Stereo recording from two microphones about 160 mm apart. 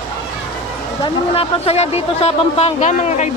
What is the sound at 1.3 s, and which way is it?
Speech, 40° left (ahead or behind).